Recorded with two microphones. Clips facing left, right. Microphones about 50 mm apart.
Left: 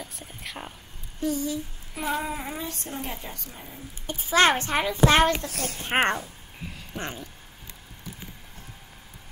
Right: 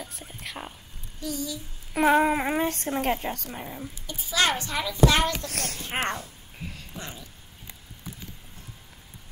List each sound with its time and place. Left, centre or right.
0.0 s whispering: centre
1.2 s a child's voice: left
2.0 s a woman's voice: right
4.1 s a child's voice: left
5.5 s a woman's voice: right
6.6 s speech: centre
7.0 s a child's voice: left